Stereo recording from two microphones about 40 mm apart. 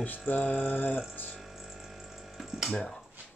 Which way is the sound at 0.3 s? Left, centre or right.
Left.